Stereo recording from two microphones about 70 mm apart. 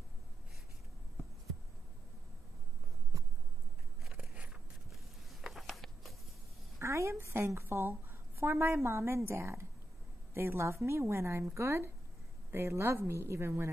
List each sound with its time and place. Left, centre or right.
4.0 s biting: centre
5.3 s a sound: centre
6.8 s a woman's voice: right